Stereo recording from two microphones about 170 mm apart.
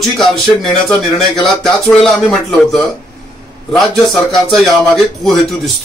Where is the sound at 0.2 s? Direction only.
Centre (ahead or behind).